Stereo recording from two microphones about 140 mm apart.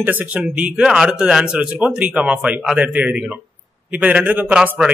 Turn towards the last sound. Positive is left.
turn(degrees=-10)  # may be behind; listen again after turning